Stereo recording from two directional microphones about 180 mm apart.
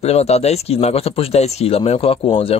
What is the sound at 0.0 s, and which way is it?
Speech, 35° left (ahead or behind).